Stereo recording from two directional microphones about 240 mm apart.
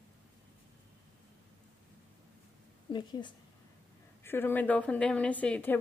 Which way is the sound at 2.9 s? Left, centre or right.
Centre.